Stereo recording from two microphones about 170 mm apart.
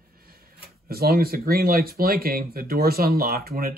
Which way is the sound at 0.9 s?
65° right (ahead or behind).